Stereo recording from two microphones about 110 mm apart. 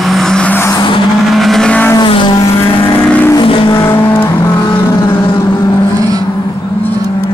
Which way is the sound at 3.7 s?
25° left (ahead or behind).